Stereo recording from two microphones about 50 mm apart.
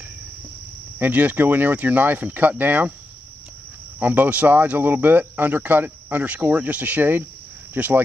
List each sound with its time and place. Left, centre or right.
0.9 s speech: right
4.0 s speech: right